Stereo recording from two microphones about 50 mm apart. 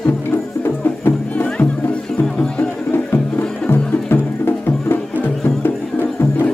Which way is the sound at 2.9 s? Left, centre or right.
Left.